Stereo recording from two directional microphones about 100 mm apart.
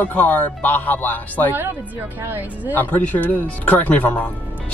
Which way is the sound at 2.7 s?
20° left (ahead or behind).